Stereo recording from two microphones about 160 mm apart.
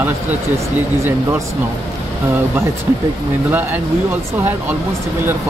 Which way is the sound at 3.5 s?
10° right (ahead or behind).